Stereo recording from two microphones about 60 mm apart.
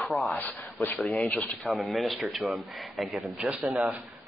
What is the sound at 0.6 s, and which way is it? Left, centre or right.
Speech, left.